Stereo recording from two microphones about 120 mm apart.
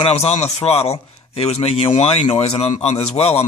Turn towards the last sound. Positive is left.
turn(degrees=60)  # may be behind; listen again after turning